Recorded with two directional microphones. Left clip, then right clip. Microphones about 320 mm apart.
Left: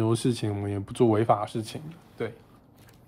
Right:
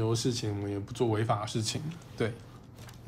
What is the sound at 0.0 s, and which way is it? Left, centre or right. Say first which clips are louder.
Speech: left 4 dB; centre.